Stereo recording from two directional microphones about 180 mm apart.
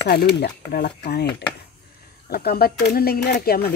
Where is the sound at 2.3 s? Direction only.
60° left (ahead or behind).